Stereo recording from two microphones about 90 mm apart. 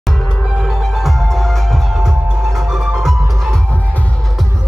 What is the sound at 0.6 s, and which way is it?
Music, 5° right (ahead or behind).